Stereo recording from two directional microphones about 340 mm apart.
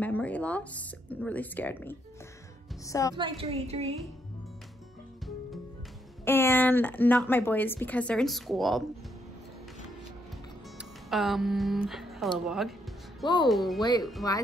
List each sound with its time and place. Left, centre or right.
0.0 s a woman's voice: centre
3.2 s a woman's voice: centre
6.2 s a woman's voice: centre
10.8 s a woman's voice: centre
13.2 s speech: centre
13.5 s a woman's voice: centre
13.7 s speech: centre